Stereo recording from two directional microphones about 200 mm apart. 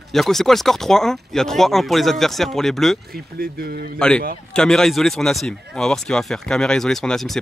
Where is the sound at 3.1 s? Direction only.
50° right (ahead or behind).